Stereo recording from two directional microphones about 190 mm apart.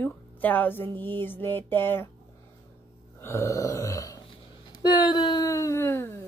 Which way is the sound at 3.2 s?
15° left (ahead or behind).